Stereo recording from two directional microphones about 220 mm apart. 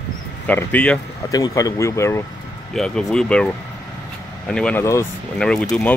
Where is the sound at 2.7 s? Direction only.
Centre (ahead or behind).